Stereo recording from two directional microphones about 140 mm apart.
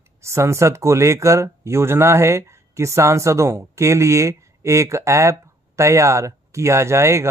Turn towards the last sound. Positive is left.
turn(degrees=-20)  # may be behind; listen again after turning